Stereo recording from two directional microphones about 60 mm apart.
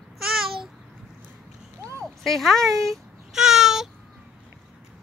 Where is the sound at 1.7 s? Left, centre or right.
Right.